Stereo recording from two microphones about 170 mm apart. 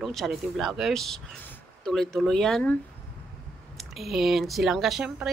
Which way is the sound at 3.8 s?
Centre (ahead or behind).